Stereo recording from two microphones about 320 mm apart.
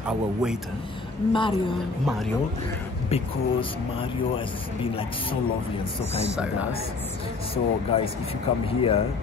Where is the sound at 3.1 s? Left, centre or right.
Centre.